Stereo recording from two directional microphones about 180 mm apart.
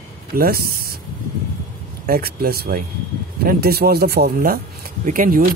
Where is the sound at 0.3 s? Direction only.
55° right (ahead or behind).